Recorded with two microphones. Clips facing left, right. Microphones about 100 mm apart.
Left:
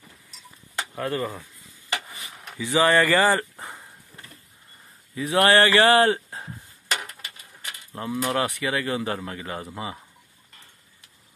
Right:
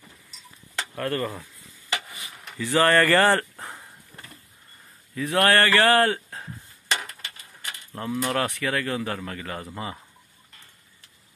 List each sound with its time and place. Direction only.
0.7 s speech: 10° left (ahead or behind)
2.5 s speech: 10° left (ahead or behind)
5.1 s a man's voice: 15° left (ahead or behind)
7.9 s speech: 15° left (ahead or behind)